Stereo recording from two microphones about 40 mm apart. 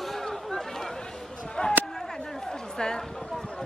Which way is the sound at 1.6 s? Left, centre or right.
Left.